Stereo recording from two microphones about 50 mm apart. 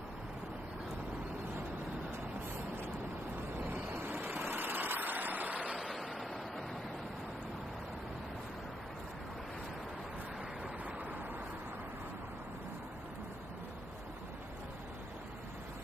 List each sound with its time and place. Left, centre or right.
3.7 s vehicle: right